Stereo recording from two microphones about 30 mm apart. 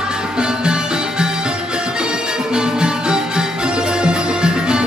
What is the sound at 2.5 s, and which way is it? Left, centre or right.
Music, right.